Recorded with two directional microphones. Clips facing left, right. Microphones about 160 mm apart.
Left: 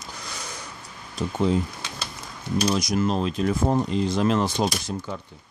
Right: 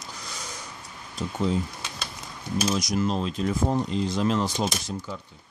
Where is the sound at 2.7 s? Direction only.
55° left (ahead or behind).